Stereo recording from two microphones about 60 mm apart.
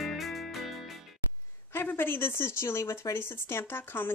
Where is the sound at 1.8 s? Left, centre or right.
Left.